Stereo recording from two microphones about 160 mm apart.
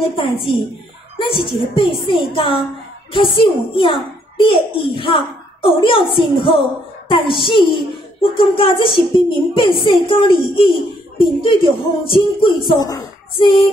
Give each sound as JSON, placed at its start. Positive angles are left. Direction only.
{"t": 0.0, "sound": "a woman's voice", "side_deg": 35}